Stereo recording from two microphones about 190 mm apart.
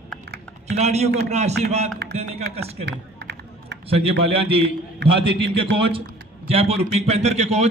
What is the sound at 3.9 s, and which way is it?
A man's voice, 30° right (ahead or behind).